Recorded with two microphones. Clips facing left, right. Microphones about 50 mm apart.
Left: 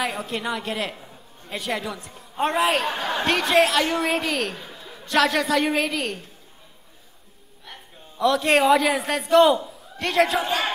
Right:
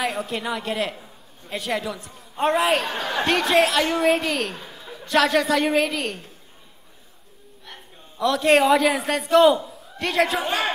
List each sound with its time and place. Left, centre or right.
0.0 s a man's voice: centre
8.2 s a man's voice: centre
10.4 s speech: right